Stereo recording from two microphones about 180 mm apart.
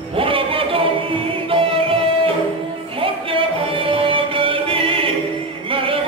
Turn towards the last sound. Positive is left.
turn(degrees=-30)  # may be behind; listen again after turning